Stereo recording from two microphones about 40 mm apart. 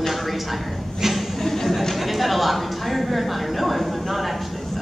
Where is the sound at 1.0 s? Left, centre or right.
Centre.